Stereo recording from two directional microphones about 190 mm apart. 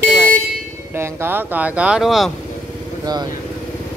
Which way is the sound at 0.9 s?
10° right (ahead or behind).